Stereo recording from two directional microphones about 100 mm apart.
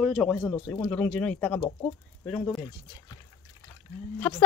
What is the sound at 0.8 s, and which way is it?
Speech, 20° left (ahead or behind).